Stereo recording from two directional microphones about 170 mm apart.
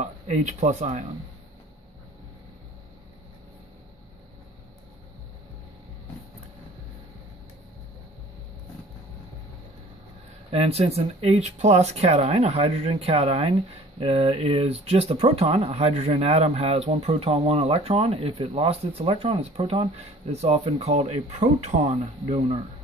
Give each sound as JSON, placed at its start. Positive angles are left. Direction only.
{"t": 0.0, "sound": "speech", "side_deg": -45}
{"t": 10.5, "sound": "speech", "side_deg": -35}